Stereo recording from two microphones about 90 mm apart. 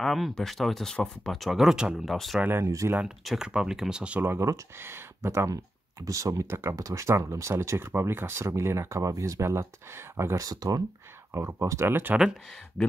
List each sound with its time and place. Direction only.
0.0 s speech: centre (ahead or behind)
2.4 s speech: 25° right (ahead or behind)
2.7 s speech: 35° right (ahead or behind)
3.3 s speech: 5° right (ahead or behind)
4.2 s speech: 30° right (ahead or behind)
6.0 s speech: 40° right (ahead or behind)
11.3 s speech: 35° right (ahead or behind)